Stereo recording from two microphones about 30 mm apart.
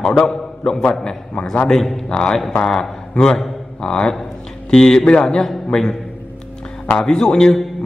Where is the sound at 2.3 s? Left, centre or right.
Centre.